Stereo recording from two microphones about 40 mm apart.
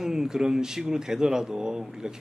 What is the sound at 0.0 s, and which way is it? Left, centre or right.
Speech, centre.